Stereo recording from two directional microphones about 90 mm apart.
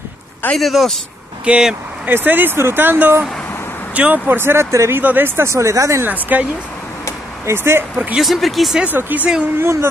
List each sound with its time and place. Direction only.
0.6 s speech: centre (ahead or behind)
2.0 s speech: 20° right (ahead or behind)
6.3 s speech: 20° right (ahead or behind)
8.2 s speech: centre (ahead or behind)
8.8 s speech: 20° right (ahead or behind)
9.6 s speech: 30° right (ahead or behind)